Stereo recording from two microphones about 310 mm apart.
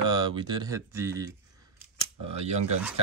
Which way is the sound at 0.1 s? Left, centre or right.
Centre.